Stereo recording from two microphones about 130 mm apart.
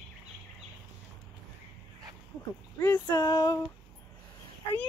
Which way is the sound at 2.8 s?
25° left (ahead or behind).